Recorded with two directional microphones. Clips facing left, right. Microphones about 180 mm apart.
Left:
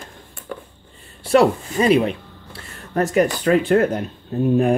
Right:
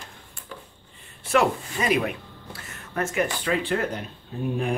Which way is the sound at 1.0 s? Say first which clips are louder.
Left 7 dB; 35° left (ahead or behind).